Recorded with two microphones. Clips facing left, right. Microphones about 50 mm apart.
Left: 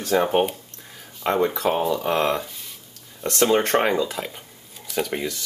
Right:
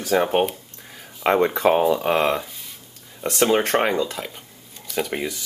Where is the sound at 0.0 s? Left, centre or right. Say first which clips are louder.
Even; centre.